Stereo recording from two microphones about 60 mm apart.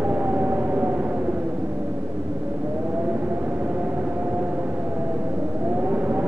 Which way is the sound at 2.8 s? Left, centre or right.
Right.